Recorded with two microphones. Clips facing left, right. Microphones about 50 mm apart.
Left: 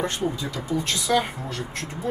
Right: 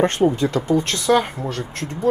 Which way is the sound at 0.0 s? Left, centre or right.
Right.